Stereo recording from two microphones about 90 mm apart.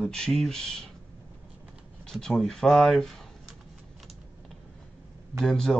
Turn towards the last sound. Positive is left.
turn(degrees=5)  # may be behind; listen again after turning